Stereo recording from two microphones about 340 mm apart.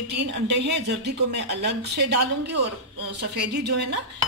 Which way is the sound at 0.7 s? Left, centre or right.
Right.